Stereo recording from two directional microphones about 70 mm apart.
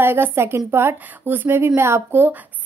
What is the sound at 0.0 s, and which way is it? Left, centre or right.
A woman's voice, right.